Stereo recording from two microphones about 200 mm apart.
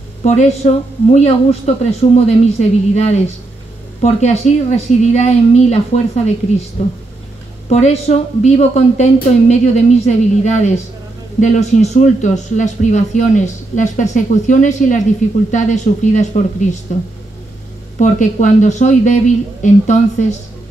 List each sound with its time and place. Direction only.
0.2 s speech: 35° left (ahead or behind)
7.7 s speech: 30° left (ahead or behind)